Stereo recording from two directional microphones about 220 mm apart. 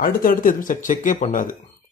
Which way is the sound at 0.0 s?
40° left (ahead or behind).